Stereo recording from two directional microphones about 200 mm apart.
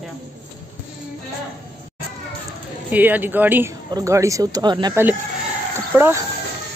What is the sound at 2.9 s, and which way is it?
Speech, 10° right (ahead or behind).